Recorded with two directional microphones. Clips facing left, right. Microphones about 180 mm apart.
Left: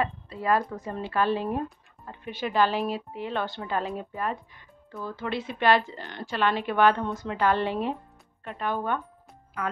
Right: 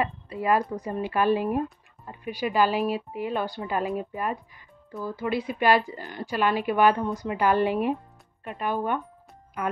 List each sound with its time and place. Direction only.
0.0 s speech: 10° right (ahead or behind)